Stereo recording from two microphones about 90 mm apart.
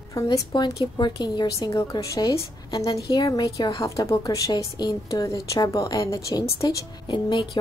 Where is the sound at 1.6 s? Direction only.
45° left (ahead or behind).